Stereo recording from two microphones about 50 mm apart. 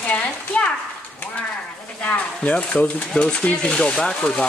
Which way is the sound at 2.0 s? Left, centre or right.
Left.